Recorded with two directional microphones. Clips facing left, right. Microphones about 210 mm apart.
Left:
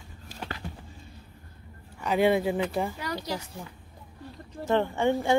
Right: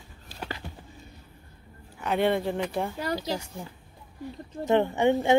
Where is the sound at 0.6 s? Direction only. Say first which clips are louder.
Left 2 dB; centre (ahead or behind).